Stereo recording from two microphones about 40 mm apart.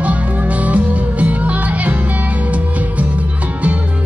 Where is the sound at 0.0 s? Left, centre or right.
Right.